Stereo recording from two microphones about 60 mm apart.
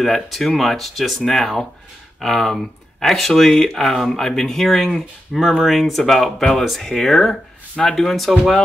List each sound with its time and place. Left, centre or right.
0.0 s speech: centre